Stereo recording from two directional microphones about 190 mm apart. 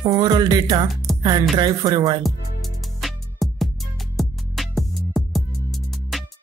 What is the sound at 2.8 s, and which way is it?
Music, centre (ahead or behind).